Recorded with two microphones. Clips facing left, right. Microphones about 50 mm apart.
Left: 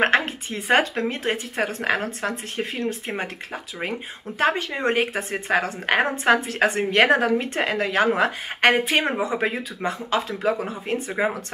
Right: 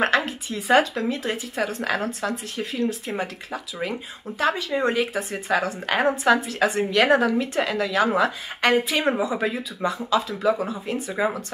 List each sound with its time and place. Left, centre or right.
0.0 s a woman's voice: left